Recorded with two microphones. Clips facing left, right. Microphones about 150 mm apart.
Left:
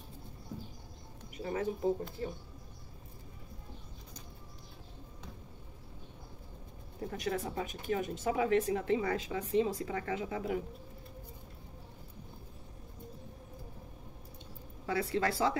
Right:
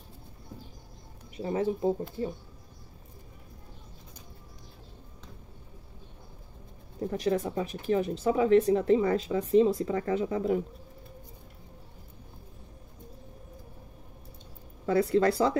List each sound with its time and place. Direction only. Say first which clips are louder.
1.3 s speech: right 6 dB; 30° right (ahead or behind)
7.1 s speech: right 8 dB; 35° right (ahead or behind)
14.9 s speech: right 9 dB; 40° right (ahead or behind)